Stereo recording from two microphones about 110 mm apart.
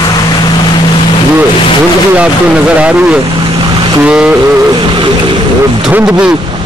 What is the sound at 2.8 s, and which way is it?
Speech, 15° right (ahead or behind).